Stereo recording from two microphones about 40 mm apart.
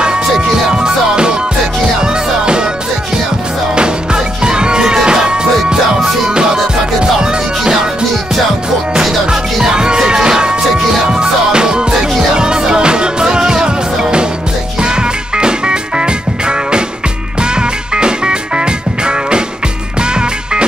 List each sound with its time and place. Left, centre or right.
0.4 s music: right
3.7 s music: right
9.0 s music: centre